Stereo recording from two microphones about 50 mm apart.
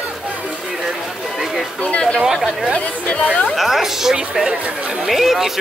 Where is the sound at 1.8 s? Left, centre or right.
Left.